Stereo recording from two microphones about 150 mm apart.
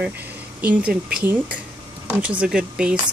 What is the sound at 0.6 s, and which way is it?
Speech, 10° right (ahead or behind).